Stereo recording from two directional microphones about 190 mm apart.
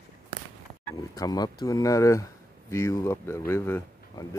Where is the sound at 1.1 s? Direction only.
20° left (ahead or behind).